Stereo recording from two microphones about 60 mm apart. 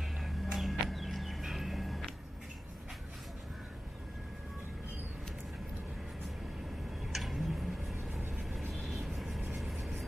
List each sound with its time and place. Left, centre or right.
0.5 s music: centre
7.1 s tick-tock: centre
7.9 s vehicle: right
8.8 s vehicle: centre